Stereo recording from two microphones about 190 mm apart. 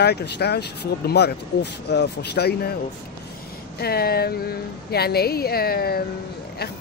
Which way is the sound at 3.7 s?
55° left (ahead or behind).